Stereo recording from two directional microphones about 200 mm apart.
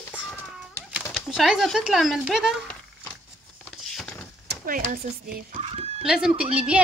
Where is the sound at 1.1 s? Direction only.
Centre (ahead or behind).